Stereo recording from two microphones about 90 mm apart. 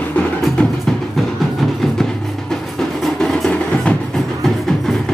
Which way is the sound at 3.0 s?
5° left (ahead or behind).